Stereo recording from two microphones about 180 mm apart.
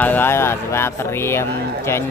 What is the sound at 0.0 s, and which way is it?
Speech, 10° left (ahead or behind).